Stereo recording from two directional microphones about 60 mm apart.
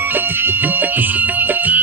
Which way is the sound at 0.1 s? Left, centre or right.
Right.